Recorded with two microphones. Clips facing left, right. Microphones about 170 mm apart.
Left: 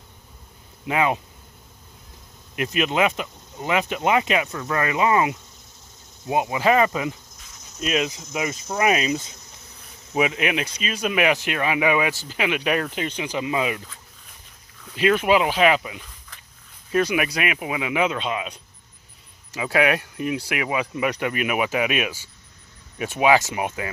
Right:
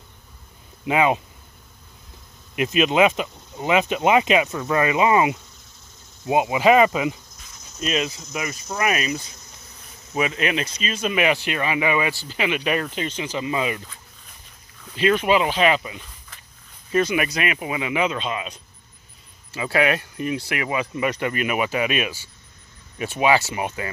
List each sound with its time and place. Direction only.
0.8 s speech: 20° right (ahead or behind)
2.5 s speech: 20° right (ahead or behind)
7.8 s speech: 5° left (ahead or behind)
8.1 s speech: 20° left (ahead or behind); by 13.8 s 5° left (ahead or behind)
15.0 s speech: 5° left (ahead or behind)